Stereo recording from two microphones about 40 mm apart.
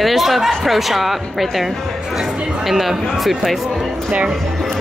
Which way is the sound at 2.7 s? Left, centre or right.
Centre.